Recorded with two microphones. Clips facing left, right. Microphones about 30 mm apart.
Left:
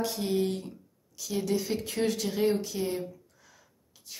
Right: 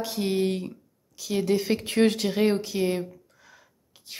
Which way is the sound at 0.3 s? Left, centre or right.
Right.